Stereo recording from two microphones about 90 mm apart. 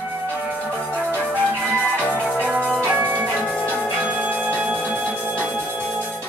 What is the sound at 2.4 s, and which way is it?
Music, 10° right (ahead or behind).